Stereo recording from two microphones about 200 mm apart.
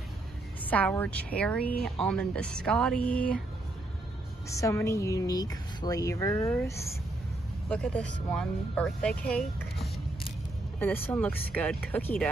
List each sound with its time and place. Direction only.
0.7 s a woman's voice: 10° left (ahead or behind)
4.5 s a woman's voice: 15° left (ahead or behind)